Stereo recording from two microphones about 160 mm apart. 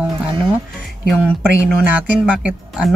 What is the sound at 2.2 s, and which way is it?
Speech, 10° right (ahead or behind).